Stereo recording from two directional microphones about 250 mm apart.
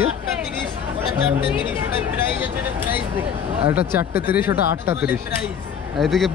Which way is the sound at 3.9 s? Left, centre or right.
Centre.